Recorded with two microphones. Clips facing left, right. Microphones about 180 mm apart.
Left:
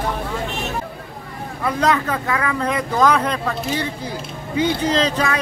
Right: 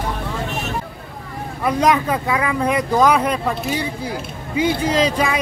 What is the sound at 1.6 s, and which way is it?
Speech, 15° right (ahead or behind).